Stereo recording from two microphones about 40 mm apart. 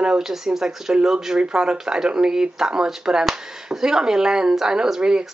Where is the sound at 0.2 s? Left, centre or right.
Centre.